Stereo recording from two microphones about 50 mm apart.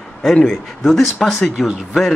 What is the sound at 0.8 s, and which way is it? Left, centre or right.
Speech, centre.